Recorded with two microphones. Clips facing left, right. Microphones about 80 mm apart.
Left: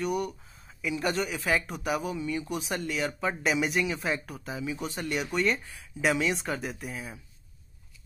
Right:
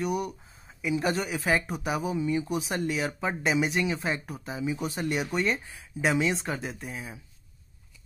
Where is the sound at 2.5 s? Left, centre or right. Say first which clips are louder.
Right 3 dB; centre.